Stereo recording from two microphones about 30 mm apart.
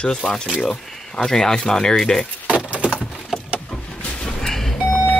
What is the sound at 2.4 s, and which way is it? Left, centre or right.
Keys jangling, right.